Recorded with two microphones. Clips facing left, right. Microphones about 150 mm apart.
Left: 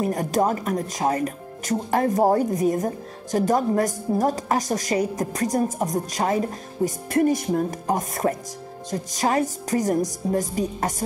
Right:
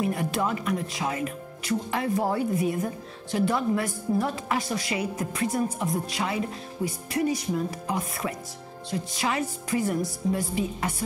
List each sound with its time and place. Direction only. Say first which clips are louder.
0.0 s speech: left 5 dB; 40° left (ahead or behind)
10.3 s music: left 6 dB; 40° left (ahead or behind)